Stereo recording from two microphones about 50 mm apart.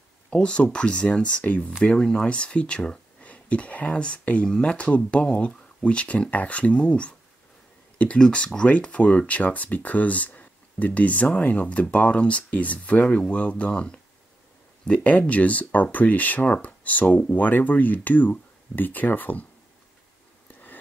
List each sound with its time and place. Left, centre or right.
0.3 s speech: left
2.0 s speech: centre
8.2 s speech: centre; by 19.4 s left
20.4 s a sound: left